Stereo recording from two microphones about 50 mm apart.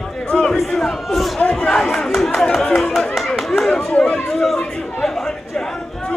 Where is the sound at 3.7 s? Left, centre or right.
Left.